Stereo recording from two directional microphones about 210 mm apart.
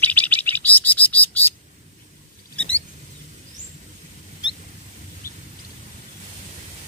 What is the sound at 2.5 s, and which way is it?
Rodents, 5° left (ahead or behind).